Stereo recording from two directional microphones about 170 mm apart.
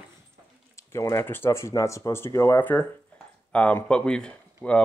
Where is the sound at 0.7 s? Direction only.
15° left (ahead or behind).